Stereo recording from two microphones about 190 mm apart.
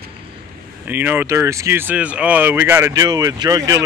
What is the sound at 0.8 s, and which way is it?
Speech, 10° right (ahead or behind).